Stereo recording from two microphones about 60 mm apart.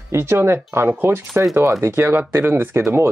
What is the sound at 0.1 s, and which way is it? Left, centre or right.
Speech, right.